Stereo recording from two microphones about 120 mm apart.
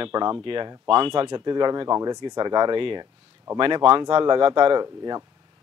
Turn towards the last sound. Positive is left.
turn(degrees=-35)  # may be behind; listen again after turning